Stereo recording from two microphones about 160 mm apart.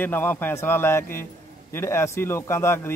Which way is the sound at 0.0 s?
15° left (ahead or behind).